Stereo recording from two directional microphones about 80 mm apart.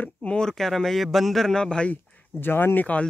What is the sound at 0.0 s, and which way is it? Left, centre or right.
Speech, centre.